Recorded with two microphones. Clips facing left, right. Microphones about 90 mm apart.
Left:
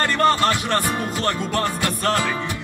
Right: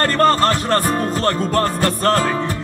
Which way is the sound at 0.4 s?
40° right (ahead or behind).